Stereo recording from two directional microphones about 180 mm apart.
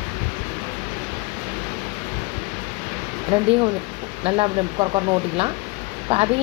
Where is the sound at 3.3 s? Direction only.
30° right (ahead or behind).